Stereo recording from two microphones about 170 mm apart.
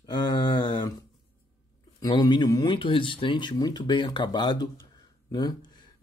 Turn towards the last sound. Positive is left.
turn(degrees=25)  # may be behind; listen again after turning